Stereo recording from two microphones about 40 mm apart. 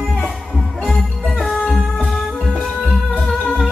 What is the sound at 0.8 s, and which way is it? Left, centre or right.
Music, centre.